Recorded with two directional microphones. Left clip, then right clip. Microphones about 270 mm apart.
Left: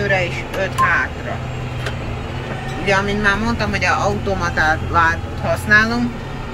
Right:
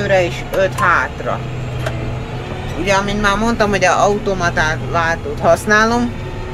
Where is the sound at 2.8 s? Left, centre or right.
Centre.